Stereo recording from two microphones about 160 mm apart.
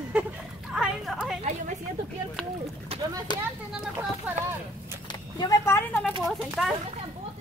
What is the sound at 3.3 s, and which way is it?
Speech, 25° left (ahead or behind).